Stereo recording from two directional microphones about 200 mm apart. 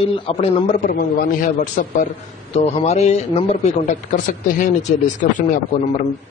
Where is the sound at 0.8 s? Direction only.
45° left (ahead or behind).